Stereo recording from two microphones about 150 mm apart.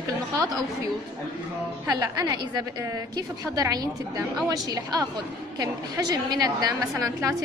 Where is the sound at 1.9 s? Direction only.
30° right (ahead or behind).